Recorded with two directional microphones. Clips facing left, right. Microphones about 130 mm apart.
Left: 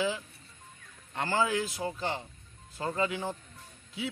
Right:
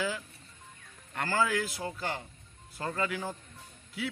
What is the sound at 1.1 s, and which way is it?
Speech, 20° left (ahead or behind).